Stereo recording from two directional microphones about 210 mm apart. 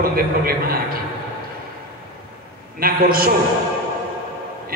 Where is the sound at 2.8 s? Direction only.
45° right (ahead or behind).